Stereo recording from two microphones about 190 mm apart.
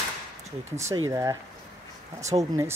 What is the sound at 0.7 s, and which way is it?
Speech, 15° right (ahead or behind).